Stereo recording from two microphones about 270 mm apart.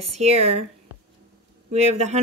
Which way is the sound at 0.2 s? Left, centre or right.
Right.